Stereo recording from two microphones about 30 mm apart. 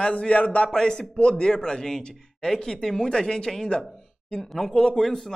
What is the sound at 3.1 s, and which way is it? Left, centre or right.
Speech, left.